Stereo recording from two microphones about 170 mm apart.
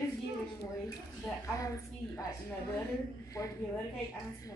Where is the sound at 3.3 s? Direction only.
20° left (ahead or behind).